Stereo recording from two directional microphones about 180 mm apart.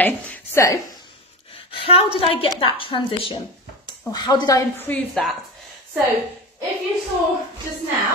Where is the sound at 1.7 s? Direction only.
30° left (ahead or behind).